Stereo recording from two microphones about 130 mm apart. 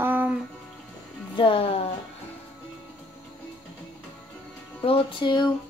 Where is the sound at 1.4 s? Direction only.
45° left (ahead or behind).